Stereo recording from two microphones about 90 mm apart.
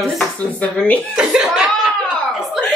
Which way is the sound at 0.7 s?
15° left (ahead or behind).